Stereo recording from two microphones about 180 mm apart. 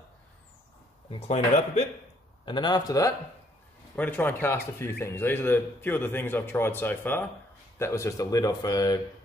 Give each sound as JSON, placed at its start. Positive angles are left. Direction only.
{"t": 1.2, "sound": "speech", "side_deg": 35}
{"t": 2.4, "sound": "a man's voice", "side_deg": 25}